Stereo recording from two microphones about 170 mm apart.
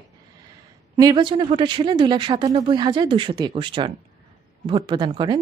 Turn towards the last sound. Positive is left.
turn(degrees=-25)  # may be behind; listen again after turning